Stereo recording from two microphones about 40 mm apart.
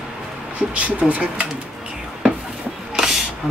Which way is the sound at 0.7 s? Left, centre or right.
Right.